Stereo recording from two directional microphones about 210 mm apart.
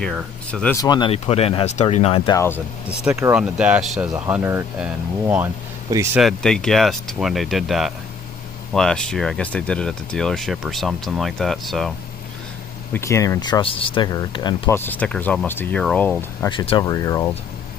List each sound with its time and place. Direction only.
0.0 s speech: 5° left (ahead or behind); by 2.3 s 25° left (ahead or behind)
2.3 s speech: 10° left (ahead or behind)
2.9 s speech: 10° right (ahead or behind)
6.2 s speech: centre (ahead or behind)
12.9 s speech: 15° left (ahead or behind)
16.4 s speech: 20° left (ahead or behind)